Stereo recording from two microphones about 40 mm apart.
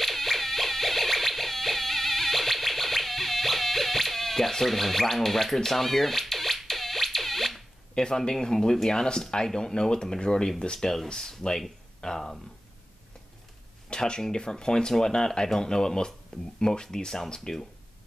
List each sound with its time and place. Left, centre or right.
0.0 s a sound: centre
7.9 s speech: centre
13.8 s speech: left